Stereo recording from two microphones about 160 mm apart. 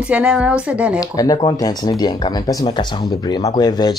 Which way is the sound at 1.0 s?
25° left (ahead or behind).